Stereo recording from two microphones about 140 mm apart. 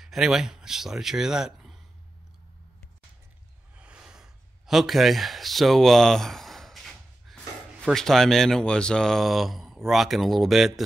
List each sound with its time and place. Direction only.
0.0 s speech: centre (ahead or behind)
3.7 s a sound: 10° right (ahead or behind)
7.8 s speech: centre (ahead or behind)